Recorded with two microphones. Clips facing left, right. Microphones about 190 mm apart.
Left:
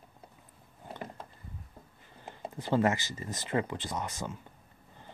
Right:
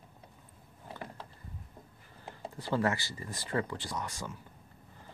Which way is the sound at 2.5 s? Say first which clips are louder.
Left 3 dB; 20° left (ahead or behind).